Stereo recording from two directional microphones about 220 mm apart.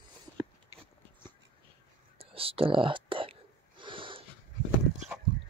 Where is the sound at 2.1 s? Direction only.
25° right (ahead or behind).